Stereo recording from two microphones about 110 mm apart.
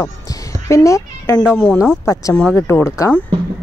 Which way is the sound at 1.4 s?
10° right (ahead or behind).